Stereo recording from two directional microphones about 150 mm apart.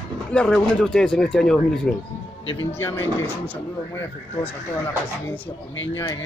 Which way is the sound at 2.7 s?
15° left (ahead or behind).